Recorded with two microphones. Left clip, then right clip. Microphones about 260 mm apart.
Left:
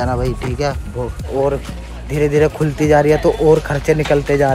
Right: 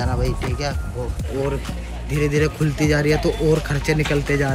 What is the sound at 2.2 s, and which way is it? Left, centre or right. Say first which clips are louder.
Speech: left 7 dB; centre.